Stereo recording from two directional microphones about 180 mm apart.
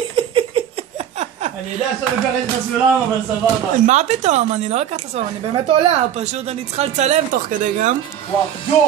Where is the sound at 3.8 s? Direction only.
40° right (ahead or behind).